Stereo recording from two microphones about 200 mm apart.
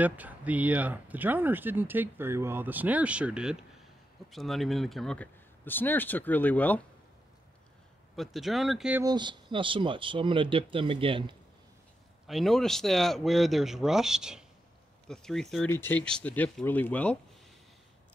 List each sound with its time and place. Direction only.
0.0 s speech: 5° right (ahead or behind); by 6.8 s 10° left (ahead or behind)
8.2 s speech: centre (ahead or behind)
9.0 s speech: 20° right (ahead or behind)
12.3 s speech: centre (ahead or behind)